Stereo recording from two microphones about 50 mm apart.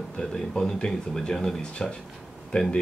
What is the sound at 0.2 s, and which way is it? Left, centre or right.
Speech, centre.